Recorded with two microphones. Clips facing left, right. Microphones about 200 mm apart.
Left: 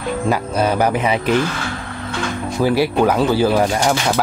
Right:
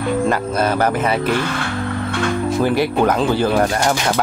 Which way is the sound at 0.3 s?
10° left (ahead or behind).